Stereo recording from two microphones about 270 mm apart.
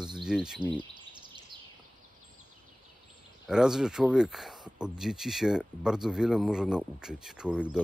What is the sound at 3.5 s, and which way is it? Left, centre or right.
Speech, centre.